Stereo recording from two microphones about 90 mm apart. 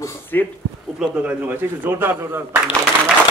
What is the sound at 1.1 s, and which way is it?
A man's voice, 15° right (ahead or behind).